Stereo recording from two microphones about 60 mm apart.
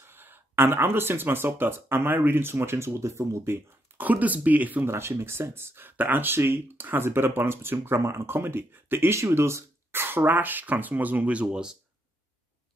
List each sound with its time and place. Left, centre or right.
0.0 s speech: right
4.0 s speech: right
4.8 s speech: right
11.4 s speech: centre